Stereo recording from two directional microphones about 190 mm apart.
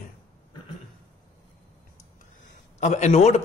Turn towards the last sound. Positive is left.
turn(degrees=35)  # may be behind; listen again after turning